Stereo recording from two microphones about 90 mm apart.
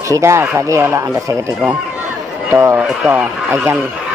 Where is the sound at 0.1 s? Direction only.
30° right (ahead or behind).